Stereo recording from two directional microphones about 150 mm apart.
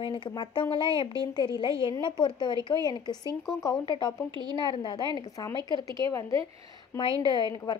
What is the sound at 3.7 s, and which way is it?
Speech, 25° left (ahead or behind).